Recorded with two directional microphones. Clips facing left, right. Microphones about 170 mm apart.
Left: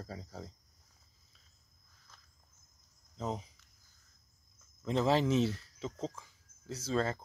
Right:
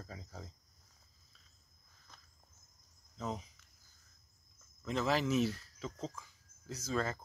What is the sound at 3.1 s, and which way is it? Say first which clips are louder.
Speech: left 3 dB; 25° left (ahead or behind).